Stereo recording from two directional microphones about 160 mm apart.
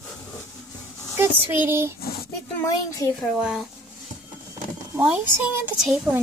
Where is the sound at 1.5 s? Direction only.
15° right (ahead or behind).